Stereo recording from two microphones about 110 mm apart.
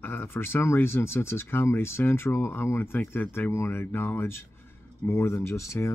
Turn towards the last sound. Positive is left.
turn(degrees=25)  # may be behind; listen again after turning